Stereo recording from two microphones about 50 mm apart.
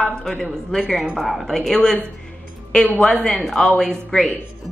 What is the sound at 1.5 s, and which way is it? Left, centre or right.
Speech, centre.